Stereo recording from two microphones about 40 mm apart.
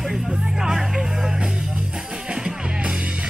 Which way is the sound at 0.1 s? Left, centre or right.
Centre.